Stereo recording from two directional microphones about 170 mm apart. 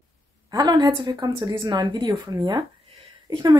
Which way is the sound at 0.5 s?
25° right (ahead or behind).